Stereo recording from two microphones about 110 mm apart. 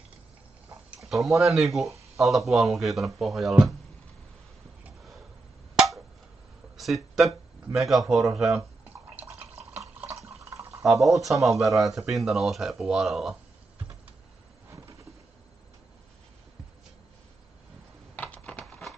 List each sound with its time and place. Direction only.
0.8 s speech: centre (ahead or behind)
6.8 s speech: centre (ahead or behind)
9.8 s water: 20° right (ahead or behind)
10.8 s speech: centre (ahead or behind)
18.1 s a sound: 10° left (ahead or behind)